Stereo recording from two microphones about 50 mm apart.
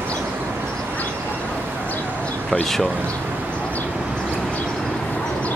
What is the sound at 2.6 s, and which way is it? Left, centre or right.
Speech, centre.